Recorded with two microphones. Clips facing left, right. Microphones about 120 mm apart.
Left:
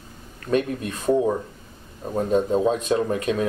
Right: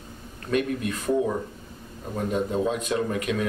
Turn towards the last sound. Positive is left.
turn(degrees=30)  # may be behind; listen again after turning